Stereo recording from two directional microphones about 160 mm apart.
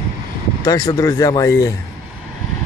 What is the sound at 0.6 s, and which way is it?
Speech, 20° left (ahead or behind).